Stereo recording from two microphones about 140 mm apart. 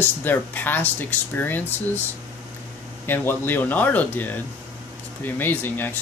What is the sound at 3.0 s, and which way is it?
Speech, 15° left (ahead or behind).